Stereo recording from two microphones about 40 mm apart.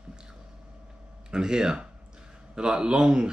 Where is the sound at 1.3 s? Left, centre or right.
Centre.